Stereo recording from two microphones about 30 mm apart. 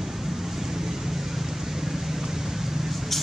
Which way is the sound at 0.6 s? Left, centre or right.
Centre.